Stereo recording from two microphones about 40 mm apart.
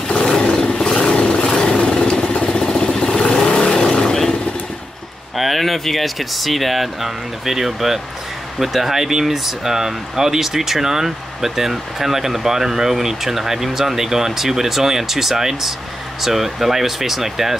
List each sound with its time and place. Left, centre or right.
0.1 s roar: centre
5.3 s speech: centre